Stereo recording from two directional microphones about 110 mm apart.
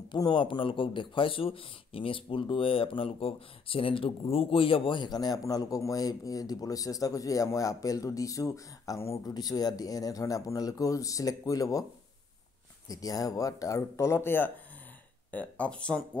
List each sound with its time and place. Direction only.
0.1 s speech: 45° left (ahead or behind)
12.8 s speech: 35° left (ahead or behind); by 16.0 s 10° left (ahead or behind)